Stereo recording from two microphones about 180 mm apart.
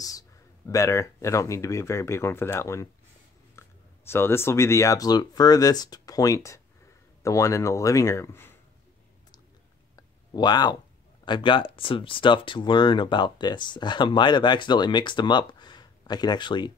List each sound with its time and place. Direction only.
0.7 s speech: 15° left (ahead or behind)
9.9 s a sound: 25° left (ahead or behind)
11.2 s speech: 25° left (ahead or behind)